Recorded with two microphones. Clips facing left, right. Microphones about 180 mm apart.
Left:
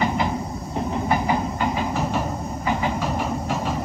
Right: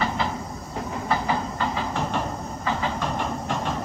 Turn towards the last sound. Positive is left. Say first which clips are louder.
# left 3 dB
turn(degrees=5)  # may be behind; listen again after turning